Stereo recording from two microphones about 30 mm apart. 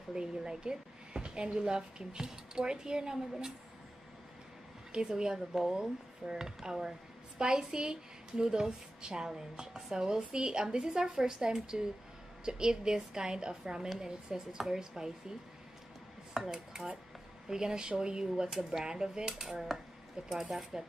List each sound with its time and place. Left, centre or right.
0.4 s a woman's voice: right
5.0 s a woman's voice: right
5.5 s speech: centre
5.8 s a woman's voice: right
16.4 s a woman's voice: centre